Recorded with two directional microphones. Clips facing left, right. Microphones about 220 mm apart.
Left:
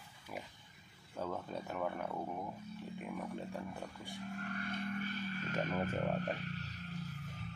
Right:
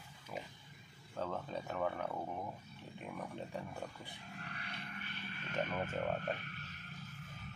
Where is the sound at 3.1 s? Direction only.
Centre (ahead or behind).